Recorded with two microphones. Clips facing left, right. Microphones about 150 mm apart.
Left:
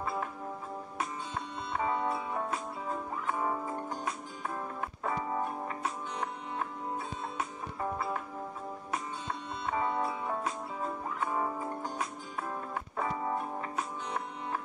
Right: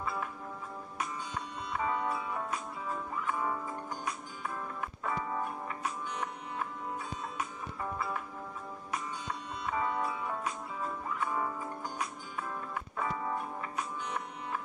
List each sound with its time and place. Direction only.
0.0 s music: 30° left (ahead or behind)
1.7 s music: 30° left (ahead or behind)
5.0 s music: 20° left (ahead or behind)
9.7 s music: 25° left (ahead or behind)